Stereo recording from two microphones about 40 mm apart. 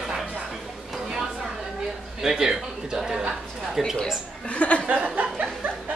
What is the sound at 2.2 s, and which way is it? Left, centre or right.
A man's voice, centre.